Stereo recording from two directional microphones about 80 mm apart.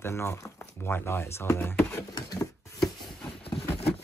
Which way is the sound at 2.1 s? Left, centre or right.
Left.